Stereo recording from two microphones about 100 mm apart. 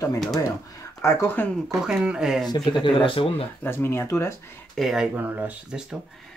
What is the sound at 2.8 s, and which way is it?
Speech, 60° left (ahead or behind).